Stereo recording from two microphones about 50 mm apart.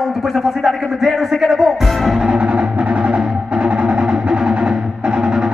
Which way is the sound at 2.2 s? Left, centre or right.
Right.